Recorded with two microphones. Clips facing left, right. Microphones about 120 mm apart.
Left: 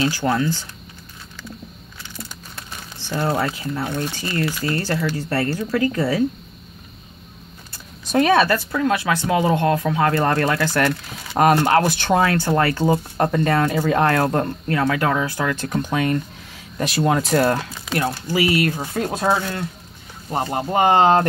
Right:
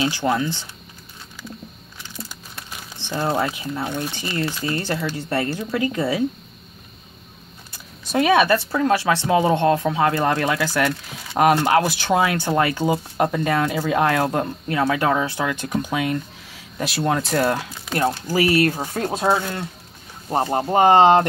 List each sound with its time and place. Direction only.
0.0 s speech: 20° right (ahead or behind)
3.0 s speech: 20° right (ahead or behind)
8.1 s speech: 5° right (ahead or behind)
8.5 s speech: 30° right (ahead or behind); by 14.8 s 10° right (ahead or behind)
14.8 s speech: 20° right (ahead or behind); by 17.6 s centre (ahead or behind)
18.2 s speech: 40° right (ahead or behind)
20.2 s speech: 30° right (ahead or behind)